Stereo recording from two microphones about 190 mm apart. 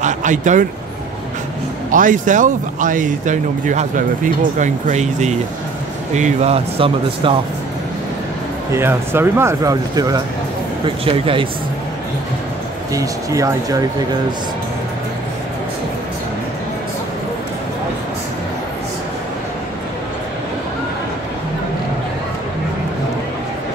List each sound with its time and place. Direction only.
0.0 s speech: 40° right (ahead or behind)
1.9 s speech: 45° right (ahead or behind)
8.7 s speech: 10° right (ahead or behind); by 11.4 s 30° right (ahead or behind)
12.9 s speech: 15° right (ahead or behind)